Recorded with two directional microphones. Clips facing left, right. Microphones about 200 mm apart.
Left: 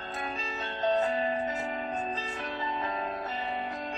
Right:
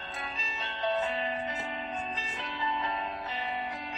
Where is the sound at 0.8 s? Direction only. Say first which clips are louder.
Left 4 dB; 40° left (ahead or behind).